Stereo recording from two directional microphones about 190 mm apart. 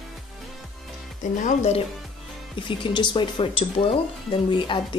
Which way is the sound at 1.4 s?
35° left (ahead or behind).